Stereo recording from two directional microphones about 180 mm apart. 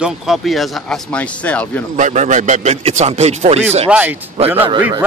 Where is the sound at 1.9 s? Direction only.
40° right (ahead or behind).